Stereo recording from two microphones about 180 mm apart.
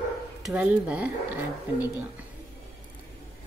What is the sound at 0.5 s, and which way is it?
A woman's voice, 5° right (ahead or behind).